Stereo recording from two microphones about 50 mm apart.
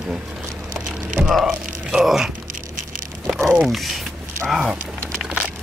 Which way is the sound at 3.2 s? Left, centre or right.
Centre.